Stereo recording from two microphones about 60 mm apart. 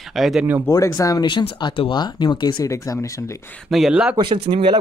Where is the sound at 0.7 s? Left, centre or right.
Left.